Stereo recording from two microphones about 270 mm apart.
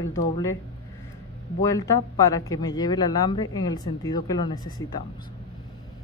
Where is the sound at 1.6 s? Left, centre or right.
Centre.